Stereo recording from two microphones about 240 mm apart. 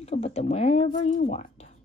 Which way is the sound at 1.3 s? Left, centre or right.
Left.